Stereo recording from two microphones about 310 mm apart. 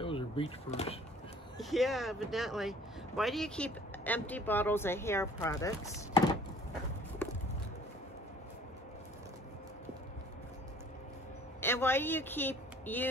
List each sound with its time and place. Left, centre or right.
0.0 s speech: centre
1.6 s speech: centre
11.6 s speech: centre